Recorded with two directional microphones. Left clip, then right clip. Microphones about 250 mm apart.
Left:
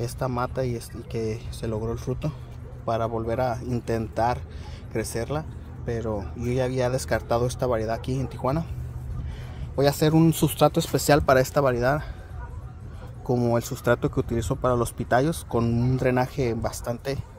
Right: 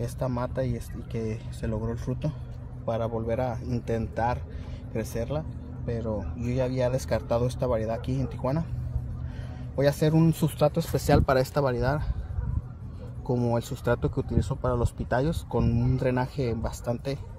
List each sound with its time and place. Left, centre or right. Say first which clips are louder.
0.0 s speech: left 3 dB; centre
9.8 s speech: left 3 dB; centre
13.3 s speech: left 4 dB; centre
14.1 s speech: left 4 dB; left
14.5 s speech: left 6 dB; left